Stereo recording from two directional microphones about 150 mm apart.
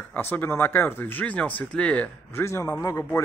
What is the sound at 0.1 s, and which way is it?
Speech, 15° left (ahead or behind).